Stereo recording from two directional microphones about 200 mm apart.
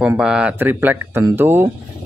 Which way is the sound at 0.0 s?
5° right (ahead or behind).